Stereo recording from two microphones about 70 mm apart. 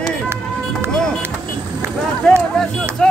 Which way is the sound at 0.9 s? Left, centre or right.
Centre.